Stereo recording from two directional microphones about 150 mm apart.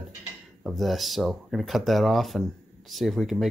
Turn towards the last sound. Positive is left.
turn(degrees=0)  # may be behind; listen again after turning